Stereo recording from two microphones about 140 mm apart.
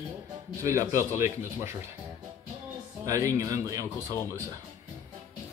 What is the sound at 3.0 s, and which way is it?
Speech, 25° right (ahead or behind).